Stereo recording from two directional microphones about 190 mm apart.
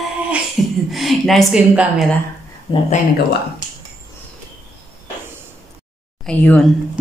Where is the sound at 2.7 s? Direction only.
30° left (ahead or behind).